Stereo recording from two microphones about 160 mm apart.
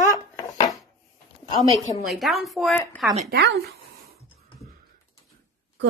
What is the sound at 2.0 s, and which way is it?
Speech, centre (ahead or behind).